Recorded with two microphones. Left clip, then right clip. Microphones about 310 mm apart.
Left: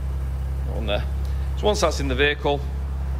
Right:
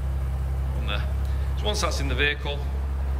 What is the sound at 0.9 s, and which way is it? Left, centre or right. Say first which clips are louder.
Speech: left 6 dB; centre.